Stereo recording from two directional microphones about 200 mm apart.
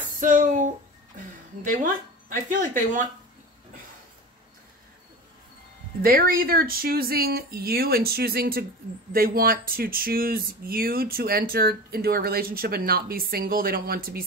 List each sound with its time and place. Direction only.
0.2 s a sound: 40° right (ahead or behind)
2.2 s speech: 40° right (ahead or behind)
6.0 s speech: 45° right (ahead or behind)